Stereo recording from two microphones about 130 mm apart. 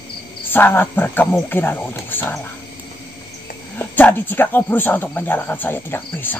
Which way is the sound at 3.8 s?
15° left (ahead or behind).